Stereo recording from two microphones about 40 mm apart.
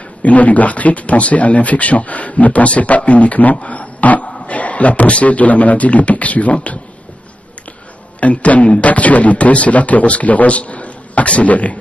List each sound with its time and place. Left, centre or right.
0.2 s speech: left
8.2 s speech: left